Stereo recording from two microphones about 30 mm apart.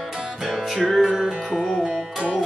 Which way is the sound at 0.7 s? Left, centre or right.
Centre.